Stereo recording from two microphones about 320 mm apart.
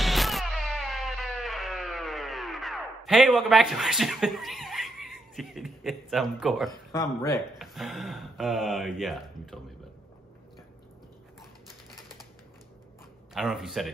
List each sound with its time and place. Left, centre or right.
0.0 s music: centre
6.9 s speech: centre
13.3 s speech: centre